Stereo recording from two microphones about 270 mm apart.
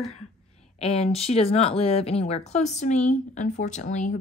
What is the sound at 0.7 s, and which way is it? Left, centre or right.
Speech, left.